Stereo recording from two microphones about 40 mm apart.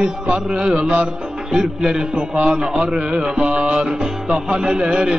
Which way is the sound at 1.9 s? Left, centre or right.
Centre.